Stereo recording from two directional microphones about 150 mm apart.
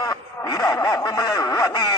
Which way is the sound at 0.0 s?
25° left (ahead or behind).